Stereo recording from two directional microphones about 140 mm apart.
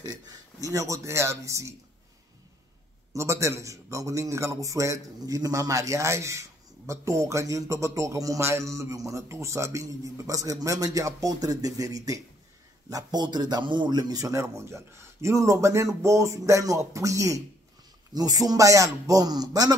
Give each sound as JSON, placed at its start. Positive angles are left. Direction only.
{"t": 0.0, "sound": "a man's voice", "side_deg": -25}
{"t": 3.1, "sound": "a man's voice", "side_deg": -20}